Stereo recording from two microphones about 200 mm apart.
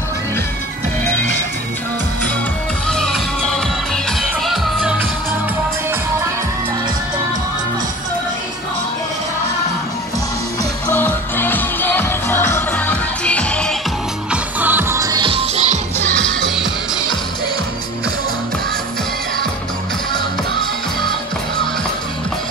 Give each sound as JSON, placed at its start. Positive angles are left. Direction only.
{"t": 2.9, "sound": "music", "side_deg": 0}
{"t": 10.9, "sound": "music", "side_deg": 10}
{"t": 14.3, "sound": "music", "side_deg": -10}
{"t": 16.0, "sound": "music", "side_deg": 0}